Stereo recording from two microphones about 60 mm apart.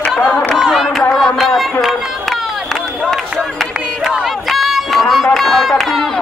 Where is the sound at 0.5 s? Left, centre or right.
Centre.